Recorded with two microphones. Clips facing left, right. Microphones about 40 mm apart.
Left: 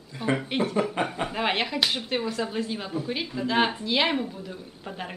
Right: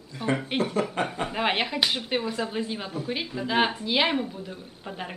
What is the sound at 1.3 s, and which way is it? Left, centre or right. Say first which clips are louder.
A woman's voice: even; centre.